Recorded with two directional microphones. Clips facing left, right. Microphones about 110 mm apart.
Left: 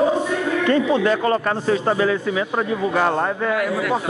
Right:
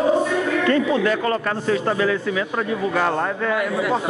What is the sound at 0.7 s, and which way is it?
Speech, 30° left (ahead or behind).